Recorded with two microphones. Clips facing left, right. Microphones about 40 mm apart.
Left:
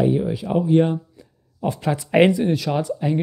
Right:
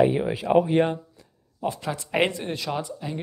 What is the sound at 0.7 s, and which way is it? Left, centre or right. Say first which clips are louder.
Speech: left 4 dB; centre.